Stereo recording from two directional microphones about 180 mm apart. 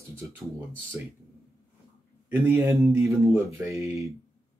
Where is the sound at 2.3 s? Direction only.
10° right (ahead or behind).